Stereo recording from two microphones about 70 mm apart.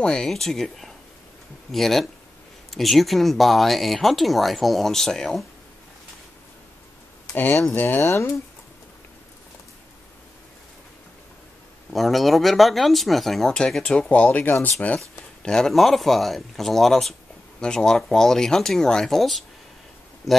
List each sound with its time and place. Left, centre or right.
0.0 s speech: centre
7.7 s speech: left
8.0 s speech: left
11.9 s speech: centre
14.0 s speech: left
15.4 s speech: centre